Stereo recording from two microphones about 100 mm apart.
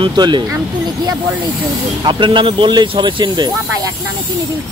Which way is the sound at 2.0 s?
55° right (ahead or behind).